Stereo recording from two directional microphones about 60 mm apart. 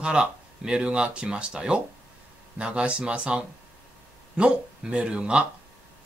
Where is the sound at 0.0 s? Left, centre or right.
Centre.